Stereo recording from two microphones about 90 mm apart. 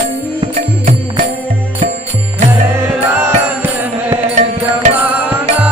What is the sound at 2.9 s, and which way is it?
Music, 25° right (ahead or behind).